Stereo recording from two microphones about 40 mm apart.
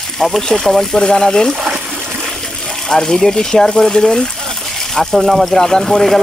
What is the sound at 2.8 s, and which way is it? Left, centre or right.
Speech, centre.